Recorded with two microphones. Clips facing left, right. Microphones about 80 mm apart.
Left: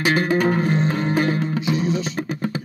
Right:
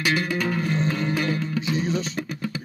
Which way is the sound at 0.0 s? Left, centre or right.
Left.